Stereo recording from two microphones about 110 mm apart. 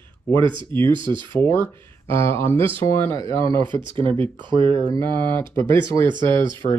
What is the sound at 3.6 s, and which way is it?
Speech, 45° right (ahead or behind).